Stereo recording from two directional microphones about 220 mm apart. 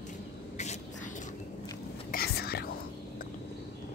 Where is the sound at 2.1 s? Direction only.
45° left (ahead or behind).